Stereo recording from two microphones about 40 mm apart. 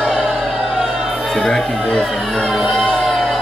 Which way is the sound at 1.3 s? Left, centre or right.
Centre.